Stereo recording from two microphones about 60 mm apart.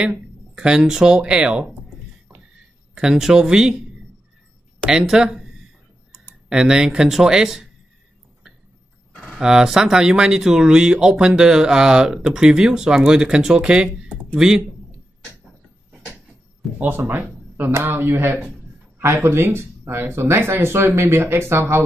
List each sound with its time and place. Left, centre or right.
0.0 s speech: centre
2.9 s speech: centre
4.9 s speech: centre
9.4 s speech: centre
16.6 s a sound: centre
17.1 s speech: right
17.7 s speech: right